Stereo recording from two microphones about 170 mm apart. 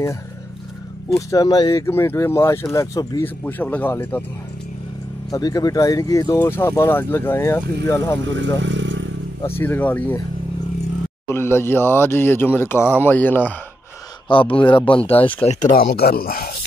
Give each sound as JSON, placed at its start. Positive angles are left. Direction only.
{"t": 1.1, "sound": "speech", "side_deg": 20}
{"t": 5.3, "sound": "speech", "side_deg": 20}
{"t": 8.5, "sound": "vehicle", "side_deg": -90}
{"t": 9.4, "sound": "speech", "side_deg": 15}
{"t": 11.2, "sound": "speech", "side_deg": 15}
{"t": 14.3, "sound": "a man's voice", "side_deg": 30}
{"t": 15.1, "sound": "speech", "side_deg": 10}
{"t": 15.7, "sound": "speech", "side_deg": 65}